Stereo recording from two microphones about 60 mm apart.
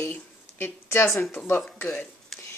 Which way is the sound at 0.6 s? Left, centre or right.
Left.